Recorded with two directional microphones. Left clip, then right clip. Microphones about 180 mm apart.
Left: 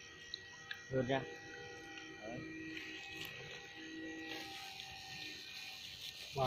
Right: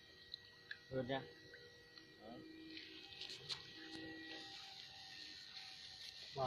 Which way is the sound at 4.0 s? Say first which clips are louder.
Left 8 dB; 5° left (ahead or behind).